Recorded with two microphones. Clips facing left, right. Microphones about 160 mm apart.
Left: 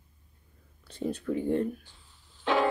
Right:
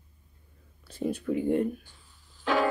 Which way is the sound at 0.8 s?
10° right (ahead or behind).